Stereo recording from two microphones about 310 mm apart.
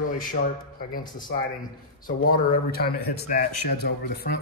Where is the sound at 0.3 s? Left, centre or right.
Left.